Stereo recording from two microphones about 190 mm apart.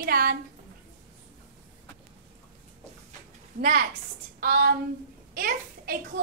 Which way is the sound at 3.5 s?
50° right (ahead or behind).